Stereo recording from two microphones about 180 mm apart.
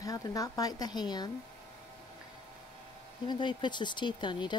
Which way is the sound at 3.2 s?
25° left (ahead or behind).